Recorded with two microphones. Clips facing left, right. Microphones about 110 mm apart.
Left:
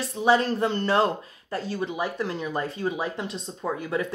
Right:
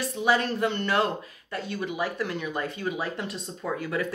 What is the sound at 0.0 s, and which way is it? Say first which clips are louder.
Speech: left 3 dB; 30° left (ahead or behind).